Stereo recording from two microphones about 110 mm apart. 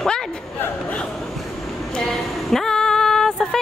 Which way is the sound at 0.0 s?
5° left (ahead or behind).